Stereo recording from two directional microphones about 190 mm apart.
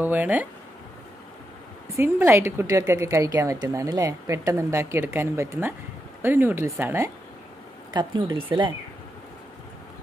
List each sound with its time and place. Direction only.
0.0 s speech: 10° right (ahead or behind)
1.9 s speech: 10° right (ahead or behind)